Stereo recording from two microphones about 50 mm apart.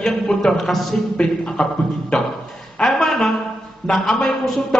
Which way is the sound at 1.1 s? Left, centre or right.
Centre.